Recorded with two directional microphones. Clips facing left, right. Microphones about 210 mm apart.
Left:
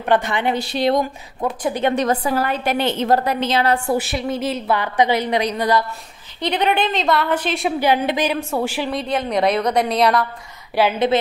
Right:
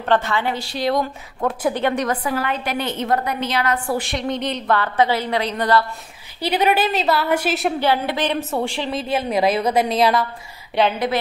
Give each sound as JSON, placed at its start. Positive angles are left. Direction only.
{"t": 0.0, "sound": "a woman's voice", "side_deg": 15}
{"t": 2.3, "sound": "a woman's voice", "side_deg": 45}
{"t": 3.0, "sound": "a woman's voice", "side_deg": 30}
{"t": 3.9, "sound": "a woman's voice", "side_deg": 5}
{"t": 6.4, "sound": "speech", "side_deg": -5}
{"t": 7.8, "sound": "a woman's voice", "side_deg": 15}
{"t": 8.3, "sound": "a woman's voice", "side_deg": 0}
{"t": 9.0, "sound": "a woman's voice", "side_deg": -5}